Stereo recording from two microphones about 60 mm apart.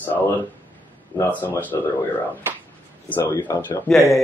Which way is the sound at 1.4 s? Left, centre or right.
Left.